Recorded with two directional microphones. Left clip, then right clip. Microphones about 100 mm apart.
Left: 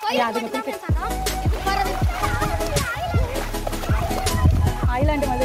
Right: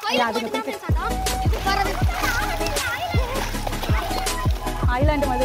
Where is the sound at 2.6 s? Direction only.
Centre (ahead or behind).